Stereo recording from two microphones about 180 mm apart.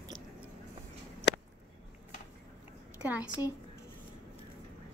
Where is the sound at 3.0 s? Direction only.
10° right (ahead or behind).